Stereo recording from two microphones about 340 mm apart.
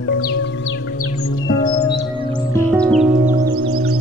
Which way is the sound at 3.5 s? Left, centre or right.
Right.